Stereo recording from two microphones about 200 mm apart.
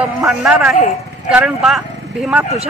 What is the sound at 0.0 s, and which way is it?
A man's voice, centre (ahead or behind).